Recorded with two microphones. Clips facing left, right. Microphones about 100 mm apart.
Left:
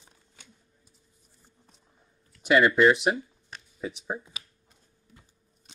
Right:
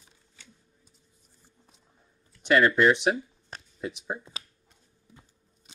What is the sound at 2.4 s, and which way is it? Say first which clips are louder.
Speech: left 1 dB; 5° left (ahead or behind).